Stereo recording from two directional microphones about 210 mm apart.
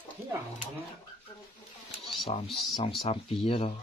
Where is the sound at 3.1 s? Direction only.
25° left (ahead or behind).